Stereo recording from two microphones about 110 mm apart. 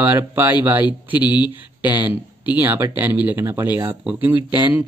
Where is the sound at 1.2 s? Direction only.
45° left (ahead or behind).